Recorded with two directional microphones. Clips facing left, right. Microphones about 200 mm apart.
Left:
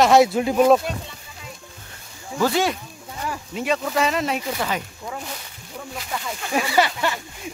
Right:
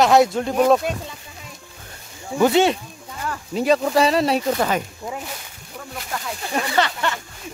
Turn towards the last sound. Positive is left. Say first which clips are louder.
# left 1 dB
turn(degrees=15)  # may be behind; listen again after turning